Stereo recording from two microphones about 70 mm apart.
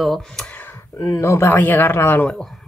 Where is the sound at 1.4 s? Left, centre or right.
Left.